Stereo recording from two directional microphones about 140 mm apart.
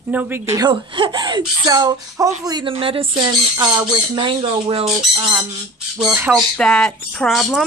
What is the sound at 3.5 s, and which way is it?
Speech, 25° right (ahead or behind).